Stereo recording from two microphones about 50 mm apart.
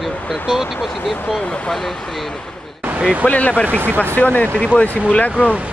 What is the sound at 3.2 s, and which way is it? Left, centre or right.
Speech, left.